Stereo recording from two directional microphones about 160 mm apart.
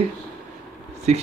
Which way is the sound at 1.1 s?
45° right (ahead or behind).